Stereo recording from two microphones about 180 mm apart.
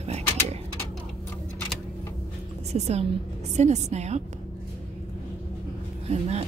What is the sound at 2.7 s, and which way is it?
Speech, 35° right (ahead or behind).